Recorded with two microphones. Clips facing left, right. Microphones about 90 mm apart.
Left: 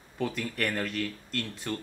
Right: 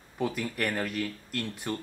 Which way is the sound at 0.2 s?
10° right (ahead or behind).